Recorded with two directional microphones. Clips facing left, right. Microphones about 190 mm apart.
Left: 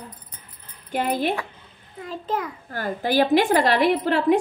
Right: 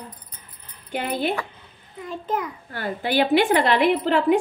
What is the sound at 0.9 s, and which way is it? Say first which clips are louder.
A child's voice: left 2 dB; 40° left (ahead or behind).